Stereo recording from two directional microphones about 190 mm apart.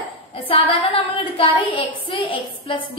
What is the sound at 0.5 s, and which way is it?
A woman's voice, 30° left (ahead or behind).